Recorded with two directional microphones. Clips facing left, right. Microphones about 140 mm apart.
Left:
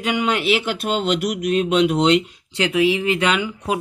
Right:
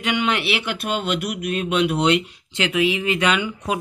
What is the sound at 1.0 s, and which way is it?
Speech, 55° right (ahead or behind).